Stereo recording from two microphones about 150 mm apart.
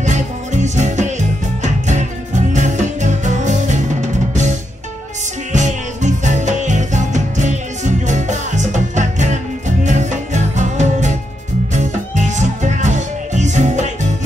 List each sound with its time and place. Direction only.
0.0 s music: 55° right (ahead or behind)